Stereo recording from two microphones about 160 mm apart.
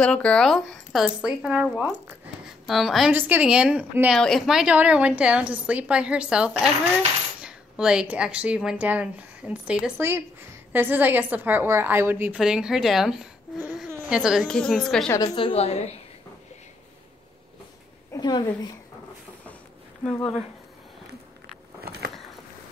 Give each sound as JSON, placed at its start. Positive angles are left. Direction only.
{"t": 0.0, "sound": "speech", "side_deg": 5}
{"t": 3.1, "sound": "a woman's voice", "side_deg": -10}
{"t": 4.1, "sound": "a woman's voice", "side_deg": 0}
{"t": 15.0, "sound": "a woman's voice", "side_deg": 25}
{"t": 18.1, "sound": "a woman's voice", "side_deg": 25}